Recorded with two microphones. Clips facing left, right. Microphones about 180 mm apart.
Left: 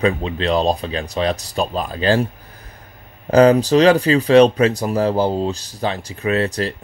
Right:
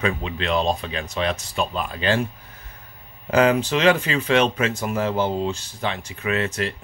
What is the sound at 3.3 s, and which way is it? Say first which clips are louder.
Speech: left 7 dB; 35° left (ahead or behind).